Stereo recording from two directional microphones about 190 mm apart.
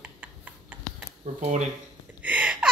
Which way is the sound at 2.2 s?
10° right (ahead or behind).